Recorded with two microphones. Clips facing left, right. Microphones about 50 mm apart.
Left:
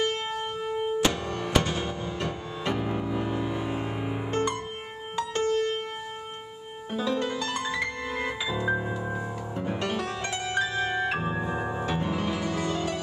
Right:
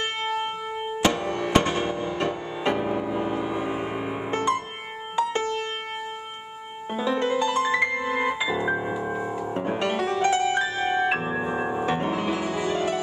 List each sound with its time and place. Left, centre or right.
1.0 s music: right
6.9 s music: right
9.5 s music: right